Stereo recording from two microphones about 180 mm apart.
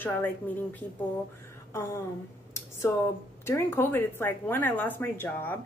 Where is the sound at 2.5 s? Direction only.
15° left (ahead or behind).